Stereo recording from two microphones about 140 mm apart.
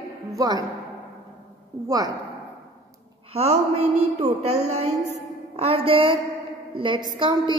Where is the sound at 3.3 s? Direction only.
50° right (ahead or behind).